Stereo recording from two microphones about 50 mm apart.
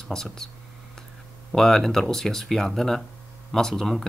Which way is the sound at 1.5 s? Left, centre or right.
Centre.